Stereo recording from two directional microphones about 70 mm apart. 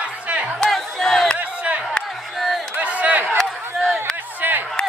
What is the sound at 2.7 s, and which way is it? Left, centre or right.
Crowd, centre.